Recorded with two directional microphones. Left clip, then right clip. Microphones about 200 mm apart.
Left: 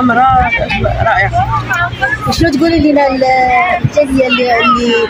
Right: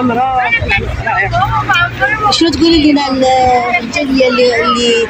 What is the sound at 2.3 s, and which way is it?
A man's voice, 50° left (ahead or behind).